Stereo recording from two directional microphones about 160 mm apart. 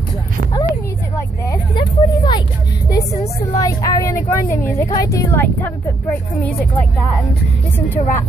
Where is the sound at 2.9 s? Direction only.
20° left (ahead or behind).